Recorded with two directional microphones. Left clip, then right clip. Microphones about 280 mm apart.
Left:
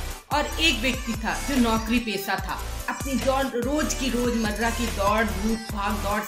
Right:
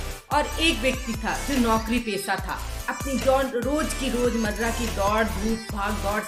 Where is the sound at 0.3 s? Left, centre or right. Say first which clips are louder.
Even; centre.